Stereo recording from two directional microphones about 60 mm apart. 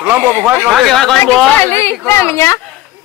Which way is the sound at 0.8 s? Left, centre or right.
Centre.